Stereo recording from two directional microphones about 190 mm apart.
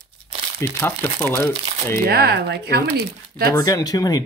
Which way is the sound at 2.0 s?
55° right (ahead or behind).